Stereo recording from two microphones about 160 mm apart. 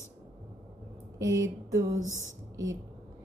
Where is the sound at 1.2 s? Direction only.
20° right (ahead or behind).